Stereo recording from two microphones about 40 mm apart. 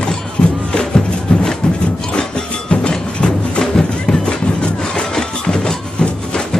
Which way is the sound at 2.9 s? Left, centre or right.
Centre.